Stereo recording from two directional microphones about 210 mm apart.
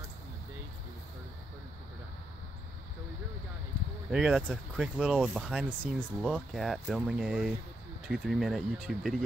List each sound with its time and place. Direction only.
4.1 s speech: 5° right (ahead or behind)